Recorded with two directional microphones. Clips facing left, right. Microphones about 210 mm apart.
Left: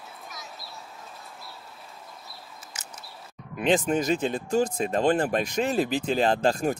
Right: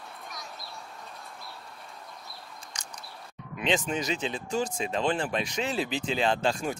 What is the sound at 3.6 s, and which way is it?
Speech, 50° left (ahead or behind).